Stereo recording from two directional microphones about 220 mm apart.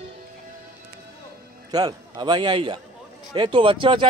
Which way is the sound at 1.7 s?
20° right (ahead or behind).